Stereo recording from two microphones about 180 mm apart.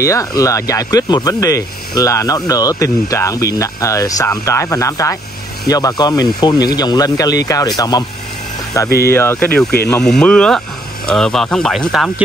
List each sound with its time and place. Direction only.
0.0 s speech: 15° left (ahead or behind)
9.0 s speech: 15° left (ahead or behind)